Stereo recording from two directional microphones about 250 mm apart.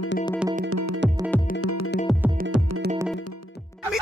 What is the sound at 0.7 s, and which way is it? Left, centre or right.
Music, right.